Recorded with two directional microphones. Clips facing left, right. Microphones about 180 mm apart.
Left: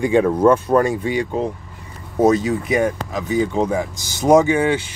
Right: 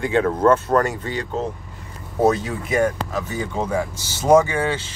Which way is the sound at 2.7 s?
15° left (ahead or behind).